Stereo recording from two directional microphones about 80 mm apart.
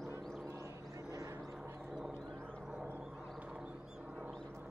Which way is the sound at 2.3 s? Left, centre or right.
Centre.